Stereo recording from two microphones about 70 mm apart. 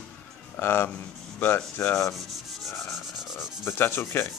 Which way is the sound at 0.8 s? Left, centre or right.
Left.